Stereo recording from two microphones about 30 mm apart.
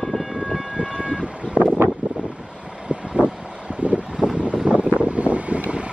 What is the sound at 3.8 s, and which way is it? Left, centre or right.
Wind noise, right.